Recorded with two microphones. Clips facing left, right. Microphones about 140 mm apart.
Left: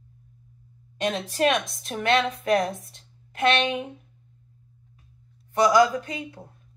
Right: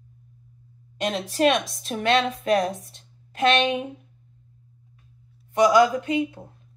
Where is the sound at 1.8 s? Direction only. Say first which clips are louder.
Right 1 dB; 25° right (ahead or behind).